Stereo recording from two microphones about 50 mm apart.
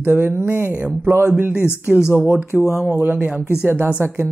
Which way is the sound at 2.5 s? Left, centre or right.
Left.